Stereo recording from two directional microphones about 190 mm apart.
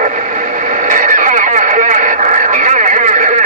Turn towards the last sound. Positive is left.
turn(degrees=-40)  # may be behind; listen again after turning